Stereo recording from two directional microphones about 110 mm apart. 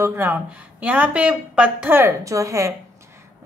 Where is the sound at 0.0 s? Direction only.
20° right (ahead or behind).